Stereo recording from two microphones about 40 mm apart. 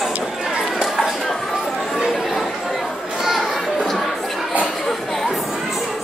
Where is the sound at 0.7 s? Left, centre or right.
Centre.